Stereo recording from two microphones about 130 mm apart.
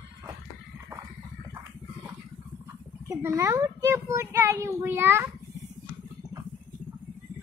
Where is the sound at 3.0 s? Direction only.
20° right (ahead or behind).